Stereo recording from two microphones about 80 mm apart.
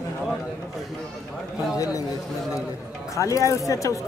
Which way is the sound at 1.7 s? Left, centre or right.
Left.